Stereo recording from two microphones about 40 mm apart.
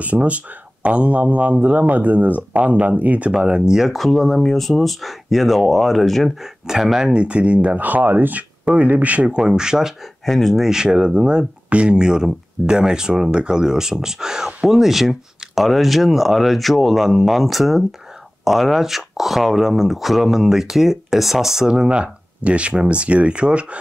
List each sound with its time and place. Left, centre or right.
0.0 s speech: right
3.3 s speech: right
3.8 s speech: centre
7.1 s speech: right
7.7 s speech: right
9.4 s speech: centre
10.2 s speech: centre
10.6 s speech: centre
14.7 s speech: centre
21.7 s speech: right